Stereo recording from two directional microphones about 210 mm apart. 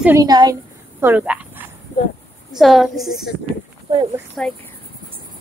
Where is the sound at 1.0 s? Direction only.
5° right (ahead or behind).